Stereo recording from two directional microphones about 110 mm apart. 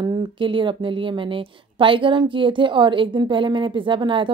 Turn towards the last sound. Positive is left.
turn(degrees=-50)  # may be behind; listen again after turning